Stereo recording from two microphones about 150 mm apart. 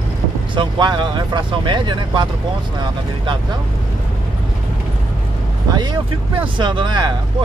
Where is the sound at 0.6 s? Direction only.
30° right (ahead or behind).